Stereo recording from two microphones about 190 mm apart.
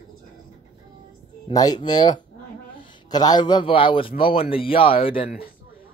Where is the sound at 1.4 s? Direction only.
20° left (ahead or behind).